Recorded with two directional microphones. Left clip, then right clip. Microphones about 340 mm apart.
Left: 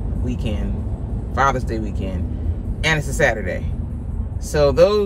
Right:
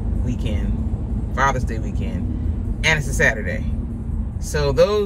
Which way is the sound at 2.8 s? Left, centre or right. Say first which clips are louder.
Even; centre.